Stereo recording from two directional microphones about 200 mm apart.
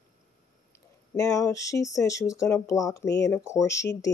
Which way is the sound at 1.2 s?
15° left (ahead or behind).